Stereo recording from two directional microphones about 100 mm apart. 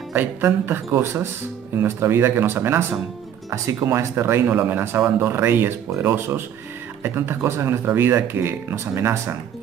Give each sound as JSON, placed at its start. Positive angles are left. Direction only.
{"t": 0.1, "sound": "speech", "side_deg": -20}